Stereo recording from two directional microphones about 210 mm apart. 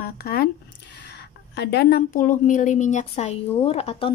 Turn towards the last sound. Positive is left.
turn(degrees=30)  # may be behind; listen again after turning